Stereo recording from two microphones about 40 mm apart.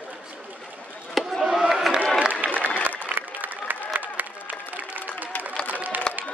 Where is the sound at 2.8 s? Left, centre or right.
Right.